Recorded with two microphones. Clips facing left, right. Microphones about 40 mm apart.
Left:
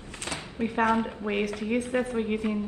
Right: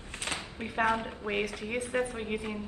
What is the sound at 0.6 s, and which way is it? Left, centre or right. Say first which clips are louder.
A woman's voice: left 5 dB; centre.